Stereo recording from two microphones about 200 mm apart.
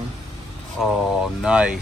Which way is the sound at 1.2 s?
5° right (ahead or behind).